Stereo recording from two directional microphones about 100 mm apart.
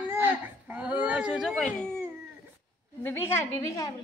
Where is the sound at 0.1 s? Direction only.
20° right (ahead or behind); by 1.7 s 5° right (ahead or behind).